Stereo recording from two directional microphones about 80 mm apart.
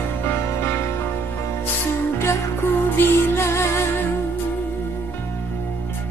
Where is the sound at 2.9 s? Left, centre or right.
Left.